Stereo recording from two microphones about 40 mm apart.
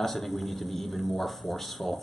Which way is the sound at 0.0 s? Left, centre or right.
Centre.